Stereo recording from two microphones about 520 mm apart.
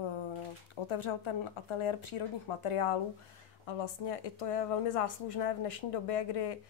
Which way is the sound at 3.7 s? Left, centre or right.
Left.